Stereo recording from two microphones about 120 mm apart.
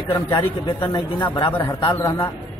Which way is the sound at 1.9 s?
25° left (ahead or behind).